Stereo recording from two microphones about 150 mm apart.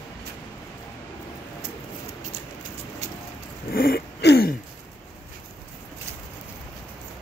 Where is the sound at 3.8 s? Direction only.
90° left.